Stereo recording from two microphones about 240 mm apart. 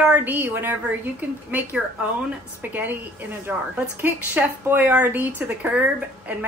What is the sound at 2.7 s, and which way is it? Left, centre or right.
A woman's voice, centre.